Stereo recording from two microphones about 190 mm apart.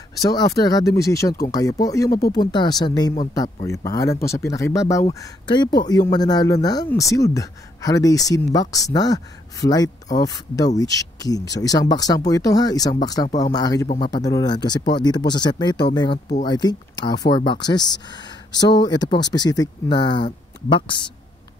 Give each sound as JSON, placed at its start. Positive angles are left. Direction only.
{"t": 0.2, "sound": "speech", "side_deg": 20}